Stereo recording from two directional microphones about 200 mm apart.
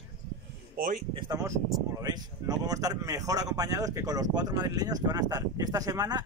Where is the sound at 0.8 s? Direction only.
45° right (ahead or behind).